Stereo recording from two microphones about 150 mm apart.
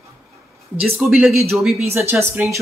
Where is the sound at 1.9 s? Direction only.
15° right (ahead or behind).